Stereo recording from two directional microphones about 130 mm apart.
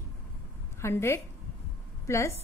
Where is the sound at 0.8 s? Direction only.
20° left (ahead or behind).